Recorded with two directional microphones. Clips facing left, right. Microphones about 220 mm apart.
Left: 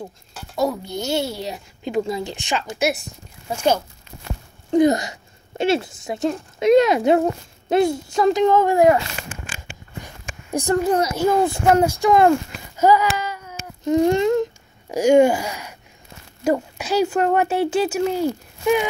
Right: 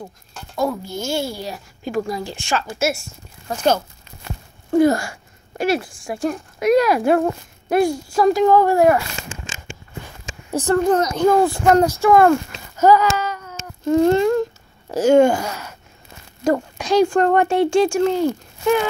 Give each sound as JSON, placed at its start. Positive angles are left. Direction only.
{"t": 0.6, "sound": "a child's voice", "side_deg": 20}
{"t": 10.5, "sound": "a child's voice", "side_deg": 10}